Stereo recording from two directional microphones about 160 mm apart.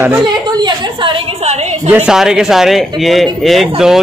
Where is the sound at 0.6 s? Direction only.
30° right (ahead or behind).